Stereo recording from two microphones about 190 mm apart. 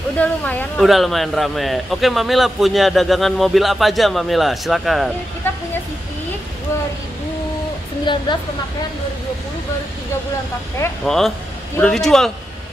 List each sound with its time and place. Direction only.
0.2 s speech: 10° left (ahead or behind)
8.0 s speech: 25° left (ahead or behind)
11.1 s speech: centre (ahead or behind)